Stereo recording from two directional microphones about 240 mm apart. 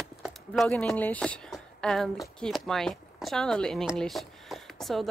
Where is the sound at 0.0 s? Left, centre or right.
Centre.